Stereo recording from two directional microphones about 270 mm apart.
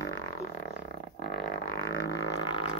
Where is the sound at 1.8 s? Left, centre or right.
Centre.